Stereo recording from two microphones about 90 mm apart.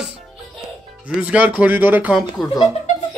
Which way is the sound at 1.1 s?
15° right (ahead or behind).